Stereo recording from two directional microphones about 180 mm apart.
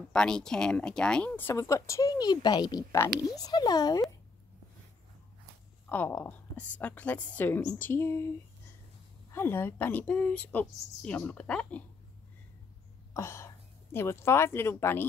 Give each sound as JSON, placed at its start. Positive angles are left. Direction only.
{"t": 0.1, "sound": "speech", "side_deg": 5}
{"t": 5.9, "sound": "speech", "side_deg": 10}
{"t": 9.3, "sound": "speech", "side_deg": 15}
{"t": 13.1, "sound": "speech", "side_deg": 15}